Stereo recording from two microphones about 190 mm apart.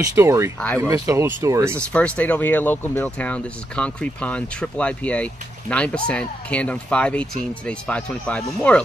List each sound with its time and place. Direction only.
0.0 s speech: 15° right (ahead or behind)
1.9 s speech: 5° left (ahead or behind)